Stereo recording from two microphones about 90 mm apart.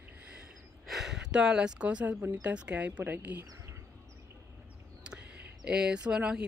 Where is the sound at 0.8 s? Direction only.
5° right (ahead or behind); by 3.7 s 20° right (ahead or behind).